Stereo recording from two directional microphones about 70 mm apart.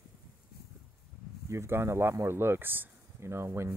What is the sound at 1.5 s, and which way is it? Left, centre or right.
Speech, right.